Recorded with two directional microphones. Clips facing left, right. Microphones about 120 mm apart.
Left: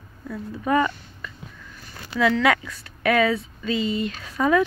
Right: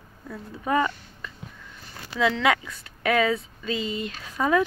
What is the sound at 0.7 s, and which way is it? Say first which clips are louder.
Speech: left 2 dB; 20° right (ahead or behind).